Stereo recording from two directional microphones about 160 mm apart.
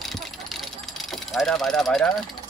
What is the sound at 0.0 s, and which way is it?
Vehicle, centre (ahead or behind).